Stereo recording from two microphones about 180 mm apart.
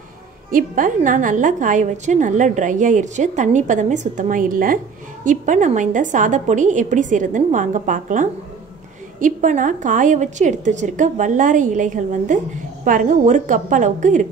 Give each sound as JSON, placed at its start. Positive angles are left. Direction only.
{"t": 0.5, "sound": "a woman's voice", "side_deg": -50}